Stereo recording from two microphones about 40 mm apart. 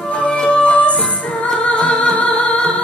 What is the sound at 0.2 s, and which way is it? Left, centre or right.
Music, left.